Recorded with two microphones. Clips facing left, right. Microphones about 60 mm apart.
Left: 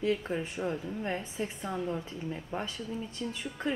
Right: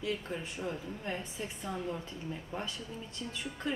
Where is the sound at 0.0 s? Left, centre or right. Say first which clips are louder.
Left 6 dB; left.